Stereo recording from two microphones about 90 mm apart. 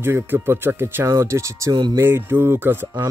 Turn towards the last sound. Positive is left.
turn(degrees=-25)  # may be behind; listen again after turning